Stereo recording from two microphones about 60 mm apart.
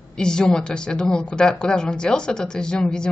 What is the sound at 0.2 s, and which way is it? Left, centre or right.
A woman's voice, centre.